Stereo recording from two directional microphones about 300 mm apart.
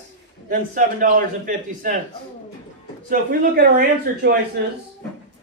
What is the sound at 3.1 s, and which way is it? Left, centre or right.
Speech, right.